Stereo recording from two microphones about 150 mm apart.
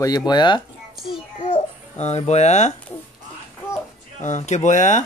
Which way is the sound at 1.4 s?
50° left (ahead or behind).